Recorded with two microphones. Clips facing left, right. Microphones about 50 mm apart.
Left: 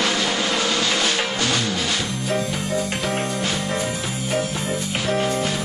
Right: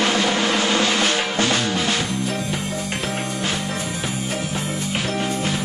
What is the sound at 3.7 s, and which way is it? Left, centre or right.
Music, left.